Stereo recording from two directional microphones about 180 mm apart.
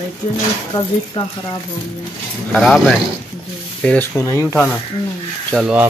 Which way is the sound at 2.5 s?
Centre (ahead or behind).